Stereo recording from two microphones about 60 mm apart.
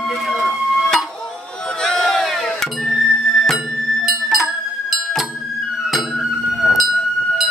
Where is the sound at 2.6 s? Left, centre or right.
Centre.